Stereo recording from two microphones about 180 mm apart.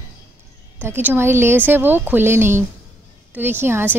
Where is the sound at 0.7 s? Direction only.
10° right (ahead or behind).